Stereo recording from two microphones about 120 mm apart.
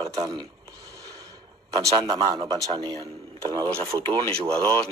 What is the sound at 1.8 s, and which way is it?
A man's voice, 35° right (ahead or behind).